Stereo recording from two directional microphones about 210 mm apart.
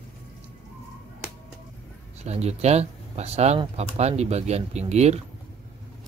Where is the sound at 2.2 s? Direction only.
30° right (ahead or behind).